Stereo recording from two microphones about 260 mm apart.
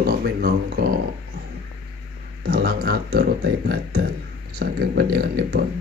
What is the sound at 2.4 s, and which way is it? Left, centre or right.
Speech, right.